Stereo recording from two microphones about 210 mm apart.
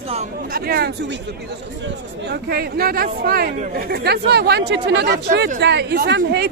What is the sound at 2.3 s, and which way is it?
Speech, 45° right (ahead or behind).